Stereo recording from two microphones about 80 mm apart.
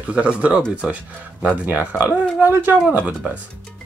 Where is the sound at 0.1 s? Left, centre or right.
Centre.